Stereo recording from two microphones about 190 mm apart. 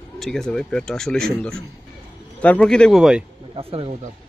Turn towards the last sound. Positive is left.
turn(degrees=-30)  # may be behind; listen again after turning